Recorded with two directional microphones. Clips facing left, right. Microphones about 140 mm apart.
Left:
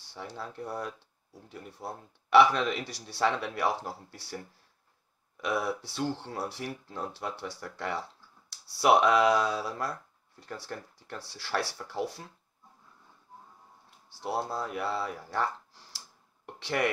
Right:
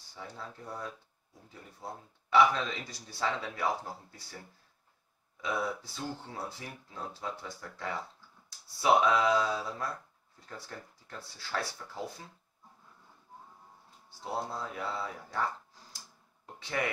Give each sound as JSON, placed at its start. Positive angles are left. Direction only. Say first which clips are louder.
{"t": 0.1, "sound": "speech", "louder": "left 4 dB", "side_deg": 75}
{"t": 5.4, "sound": "speech", "louder": "left 3 dB", "side_deg": 75}
{"t": 13.8, "sound": "speech", "louder": "left 5 dB", "side_deg": 75}